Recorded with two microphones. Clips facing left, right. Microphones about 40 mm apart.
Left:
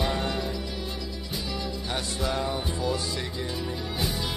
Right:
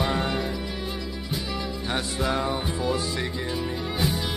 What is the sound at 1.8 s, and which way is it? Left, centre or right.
Music, right.